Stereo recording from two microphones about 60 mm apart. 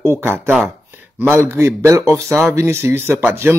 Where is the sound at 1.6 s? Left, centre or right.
Right.